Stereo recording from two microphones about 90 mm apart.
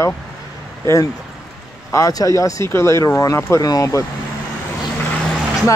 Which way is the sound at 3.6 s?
40° left (ahead or behind).